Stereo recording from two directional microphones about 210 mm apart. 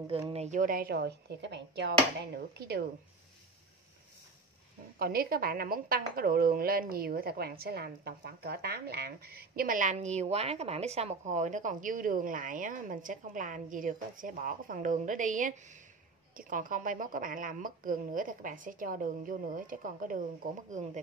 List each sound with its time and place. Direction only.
0.3 s speech: 35° right (ahead or behind); by 2.8 s 50° right (ahead or behind)
4.9 s a woman's voice: 45° right (ahead or behind)